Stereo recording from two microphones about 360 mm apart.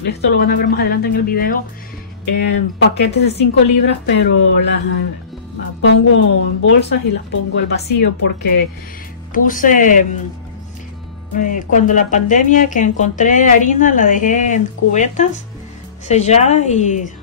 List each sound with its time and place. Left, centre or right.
0.0 s a woman's voice: left
11.3 s speech: left